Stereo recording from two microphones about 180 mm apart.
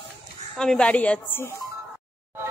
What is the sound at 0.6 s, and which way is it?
Speech, 5° left (ahead or behind).